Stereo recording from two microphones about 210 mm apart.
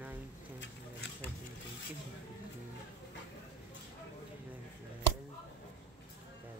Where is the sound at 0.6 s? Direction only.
50° left (ahead or behind).